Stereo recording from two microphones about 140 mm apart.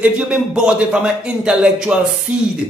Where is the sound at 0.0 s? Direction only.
5° right (ahead or behind).